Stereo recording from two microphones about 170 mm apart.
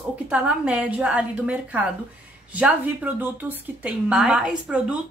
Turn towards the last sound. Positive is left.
turn(degrees=-5)  # may be behind; listen again after turning